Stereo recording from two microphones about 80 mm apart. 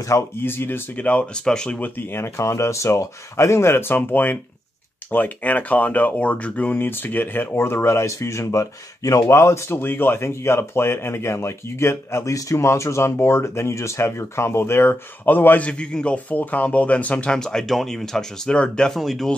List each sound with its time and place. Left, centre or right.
0.4 s speech: left
0.9 s speech: centre
1.8 s speech: left; by 19.3 s centre